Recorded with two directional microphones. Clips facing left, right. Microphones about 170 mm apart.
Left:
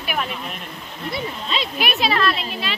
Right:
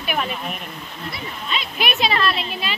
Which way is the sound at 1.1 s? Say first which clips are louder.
Left 3 dB; 30° left (ahead or behind).